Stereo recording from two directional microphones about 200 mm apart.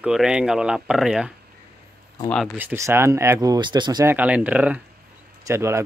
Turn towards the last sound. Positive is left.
turn(degrees=-15)  # may be behind; listen again after turning